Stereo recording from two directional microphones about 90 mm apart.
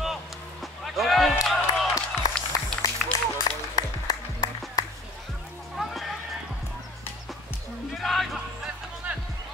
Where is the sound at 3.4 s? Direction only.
45° left (ahead or behind).